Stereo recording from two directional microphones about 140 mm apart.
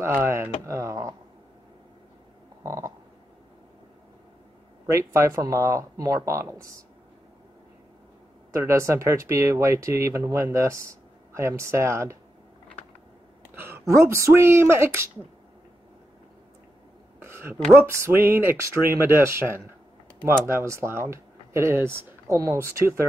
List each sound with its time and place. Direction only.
0.0 s speech: 20° right (ahead or behind)
2.6 s a sound: 20° right (ahead or behind)
4.8 s speech: 20° right (ahead or behind)
8.5 s speech: 20° right (ahead or behind)
13.6 s speech: 20° right (ahead or behind)
17.2 s a sound: 15° right (ahead or behind)
17.7 s speech: 20° right (ahead or behind)